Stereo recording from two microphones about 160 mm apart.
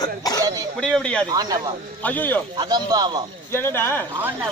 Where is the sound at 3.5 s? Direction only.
15° left (ahead or behind).